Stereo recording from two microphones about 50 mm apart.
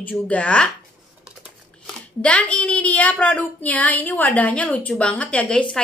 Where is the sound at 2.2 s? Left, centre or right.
Left.